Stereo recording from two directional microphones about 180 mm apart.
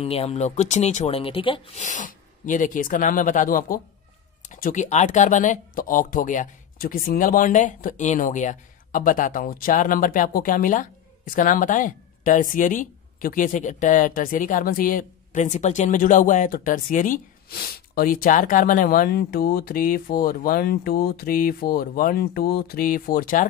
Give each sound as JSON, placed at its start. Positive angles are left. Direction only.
{"t": 0.0, "sound": "speech", "side_deg": 35}
{"t": 1.8, "sound": "speech", "side_deg": 45}